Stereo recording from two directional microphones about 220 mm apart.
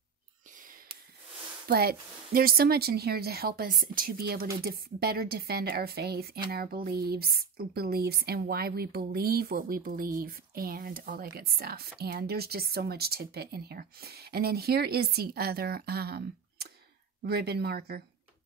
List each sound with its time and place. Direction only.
1.7 s speech: 45° right (ahead or behind)